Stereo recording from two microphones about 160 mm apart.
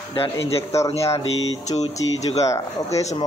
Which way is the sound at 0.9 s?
40° left (ahead or behind).